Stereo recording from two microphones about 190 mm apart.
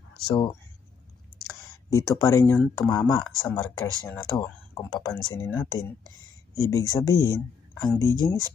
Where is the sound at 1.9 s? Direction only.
15° left (ahead or behind).